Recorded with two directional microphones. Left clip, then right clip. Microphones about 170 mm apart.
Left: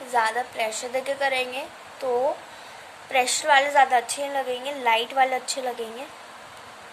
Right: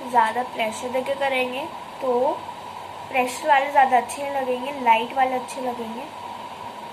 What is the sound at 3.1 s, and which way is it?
A woman's voice, 50° left (ahead or behind).